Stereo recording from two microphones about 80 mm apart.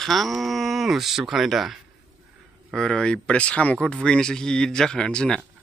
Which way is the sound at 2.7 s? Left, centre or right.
Centre.